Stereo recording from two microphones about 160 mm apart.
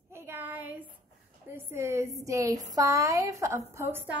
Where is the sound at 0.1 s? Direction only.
10° right (ahead or behind).